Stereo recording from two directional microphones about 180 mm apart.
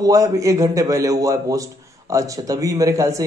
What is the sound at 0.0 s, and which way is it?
A man's voice, 15° right (ahead or behind).